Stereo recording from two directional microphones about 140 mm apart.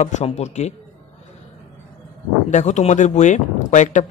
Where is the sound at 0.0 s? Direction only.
55° left (ahead or behind).